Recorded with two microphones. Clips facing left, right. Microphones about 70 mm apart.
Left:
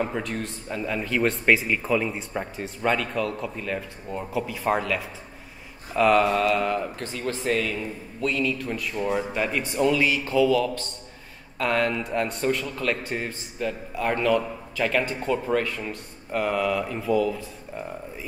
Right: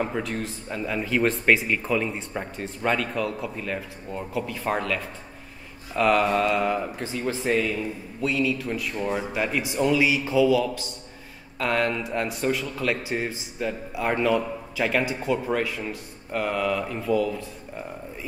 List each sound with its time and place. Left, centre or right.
0.0 s a man's voice: centre